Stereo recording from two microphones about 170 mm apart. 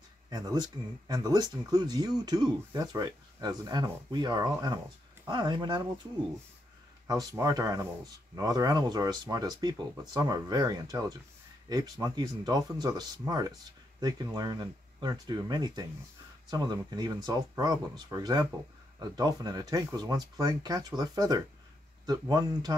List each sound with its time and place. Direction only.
0.3 s speech: 25° right (ahead or behind)
7.1 s speech: 20° right (ahead or behind)